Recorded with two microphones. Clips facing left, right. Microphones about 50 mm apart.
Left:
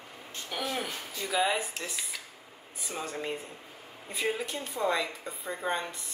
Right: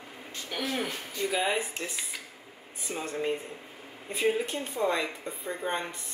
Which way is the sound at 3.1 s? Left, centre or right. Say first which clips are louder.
Right 4 dB; right.